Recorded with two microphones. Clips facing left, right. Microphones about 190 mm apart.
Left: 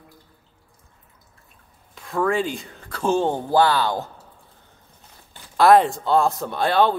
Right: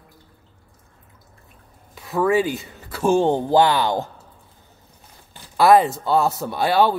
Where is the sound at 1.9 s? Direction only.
5° right (ahead or behind).